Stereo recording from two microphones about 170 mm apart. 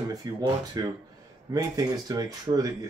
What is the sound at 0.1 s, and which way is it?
Speech, 20° right (ahead or behind).